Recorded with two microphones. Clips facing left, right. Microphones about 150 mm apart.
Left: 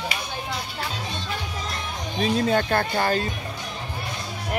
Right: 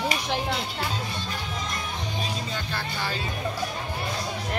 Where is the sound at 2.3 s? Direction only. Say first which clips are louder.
Left 11 dB; 60° left (ahead or behind).